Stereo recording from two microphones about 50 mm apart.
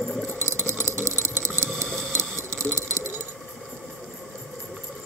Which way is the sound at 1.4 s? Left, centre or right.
Right.